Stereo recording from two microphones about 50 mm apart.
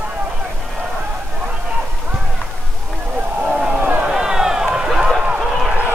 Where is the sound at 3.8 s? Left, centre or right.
Right.